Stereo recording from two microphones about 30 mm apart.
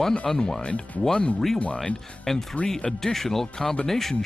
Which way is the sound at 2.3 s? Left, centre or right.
Centre.